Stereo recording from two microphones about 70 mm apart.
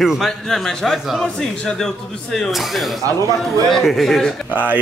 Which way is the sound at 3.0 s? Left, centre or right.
Right.